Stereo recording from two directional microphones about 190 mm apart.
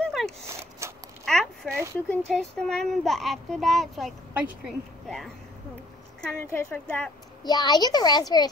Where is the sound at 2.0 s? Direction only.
Centre (ahead or behind).